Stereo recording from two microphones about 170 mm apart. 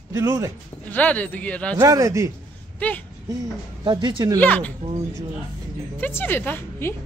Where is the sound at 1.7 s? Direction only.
20° right (ahead or behind).